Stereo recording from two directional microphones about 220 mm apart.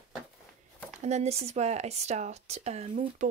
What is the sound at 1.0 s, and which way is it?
Speech, 30° right (ahead or behind).